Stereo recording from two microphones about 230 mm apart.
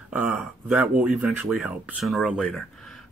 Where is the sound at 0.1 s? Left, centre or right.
Centre.